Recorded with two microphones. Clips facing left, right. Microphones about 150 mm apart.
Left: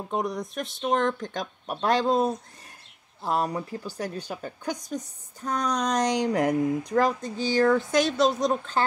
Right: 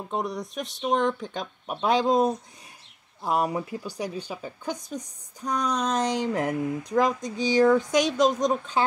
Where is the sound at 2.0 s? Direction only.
5° left (ahead or behind).